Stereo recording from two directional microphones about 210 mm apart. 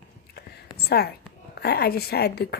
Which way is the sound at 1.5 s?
50° left (ahead or behind).